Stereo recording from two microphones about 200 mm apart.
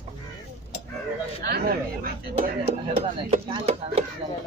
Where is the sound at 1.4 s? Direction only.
50° right (ahead or behind).